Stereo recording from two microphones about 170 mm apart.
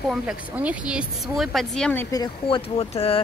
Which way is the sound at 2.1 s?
25° left (ahead or behind).